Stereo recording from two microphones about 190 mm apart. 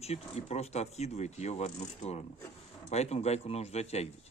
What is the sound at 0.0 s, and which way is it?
A man's voice, 35° left (ahead or behind).